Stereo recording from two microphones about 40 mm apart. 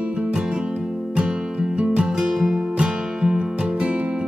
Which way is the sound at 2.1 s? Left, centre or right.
Centre.